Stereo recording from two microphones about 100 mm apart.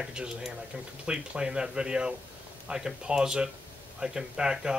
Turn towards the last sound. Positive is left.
turn(degrees=-5)  # may be behind; listen again after turning